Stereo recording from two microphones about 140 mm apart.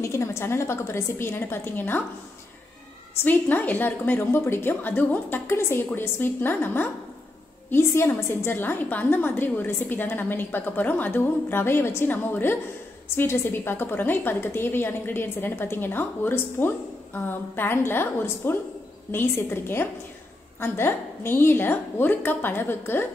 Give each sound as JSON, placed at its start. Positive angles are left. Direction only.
{"t": 0.0, "sound": "a woman's voice", "side_deg": 20}
{"t": 3.3, "sound": "a woman's voice", "side_deg": 15}